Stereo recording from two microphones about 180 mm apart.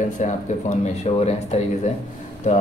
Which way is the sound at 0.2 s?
40° left (ahead or behind).